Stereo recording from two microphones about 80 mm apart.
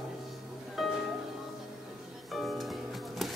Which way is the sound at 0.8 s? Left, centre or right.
Centre.